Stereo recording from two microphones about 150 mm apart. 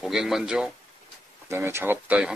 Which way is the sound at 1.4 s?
15° right (ahead or behind).